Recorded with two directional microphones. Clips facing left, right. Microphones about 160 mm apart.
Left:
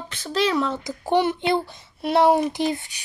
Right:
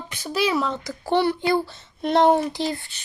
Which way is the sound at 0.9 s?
20° left (ahead or behind).